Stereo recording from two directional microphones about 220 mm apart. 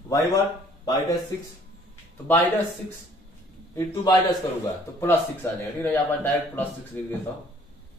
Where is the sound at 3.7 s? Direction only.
15° left (ahead or behind).